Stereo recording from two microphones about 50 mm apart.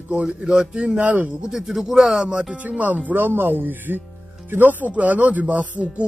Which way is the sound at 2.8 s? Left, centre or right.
Right.